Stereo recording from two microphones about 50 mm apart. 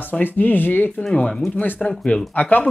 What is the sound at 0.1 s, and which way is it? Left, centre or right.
Speech, left.